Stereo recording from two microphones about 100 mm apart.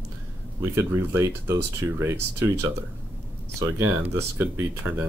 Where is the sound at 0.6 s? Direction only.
25° right (ahead or behind).